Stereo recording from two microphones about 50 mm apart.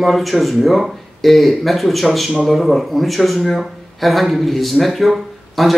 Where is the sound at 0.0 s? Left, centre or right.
Centre.